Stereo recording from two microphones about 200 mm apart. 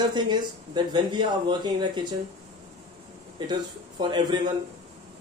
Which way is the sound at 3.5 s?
20° right (ahead or behind).